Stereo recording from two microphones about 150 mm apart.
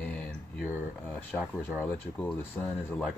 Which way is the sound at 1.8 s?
15° left (ahead or behind).